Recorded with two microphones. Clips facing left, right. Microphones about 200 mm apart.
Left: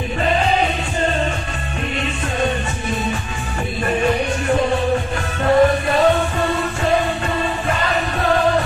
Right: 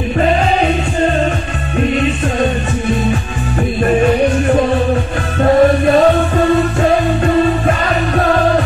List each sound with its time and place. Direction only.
5.4 s music: 40° right (ahead or behind)